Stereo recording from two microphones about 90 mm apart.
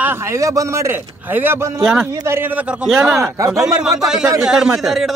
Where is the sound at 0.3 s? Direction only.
35° right (ahead or behind).